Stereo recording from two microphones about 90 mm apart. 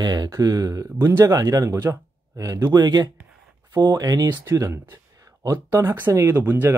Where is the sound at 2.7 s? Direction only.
50° right (ahead or behind).